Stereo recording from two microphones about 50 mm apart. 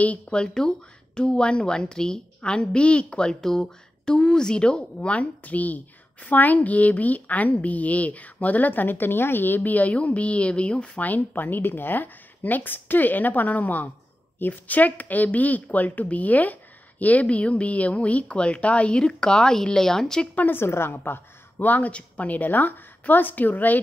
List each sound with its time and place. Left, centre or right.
0.3 s a woman's voice: centre
11.1 s a woman's voice: left
11.4 s a woman's voice: left; by 20.2 s centre
20.3 s a woman's voice: left
21.5 s a woman's voice: left